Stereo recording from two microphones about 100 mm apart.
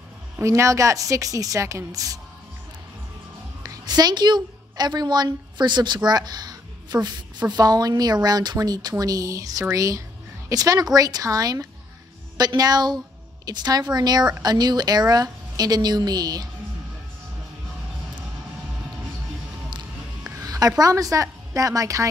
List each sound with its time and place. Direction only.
0.4 s a woman's voice: 30° right (ahead or behind)
3.6 s a woman's voice: 40° right (ahead or behind)
20.3 s a woman's voice: 35° right (ahead or behind)